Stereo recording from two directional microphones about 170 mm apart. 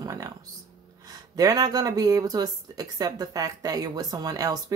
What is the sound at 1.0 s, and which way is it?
Speech, 20° right (ahead or behind).